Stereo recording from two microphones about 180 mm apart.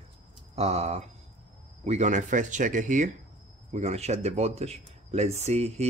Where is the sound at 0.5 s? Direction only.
35° right (ahead or behind).